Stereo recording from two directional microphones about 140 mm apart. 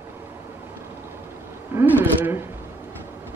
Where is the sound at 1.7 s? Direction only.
15° right (ahead or behind).